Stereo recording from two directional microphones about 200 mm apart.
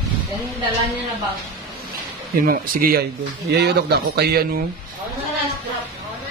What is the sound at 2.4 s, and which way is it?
Speech, 45° right (ahead or behind).